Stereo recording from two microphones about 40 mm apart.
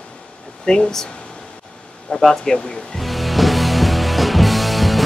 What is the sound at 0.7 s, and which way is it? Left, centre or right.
Speech, left.